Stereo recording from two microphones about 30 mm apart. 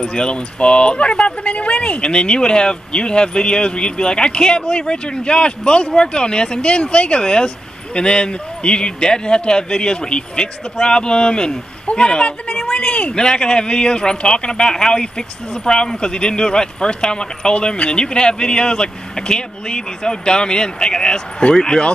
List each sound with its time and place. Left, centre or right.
0.0 s speech: left